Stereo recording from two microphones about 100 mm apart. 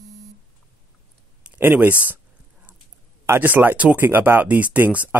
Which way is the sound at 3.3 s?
20° right (ahead or behind).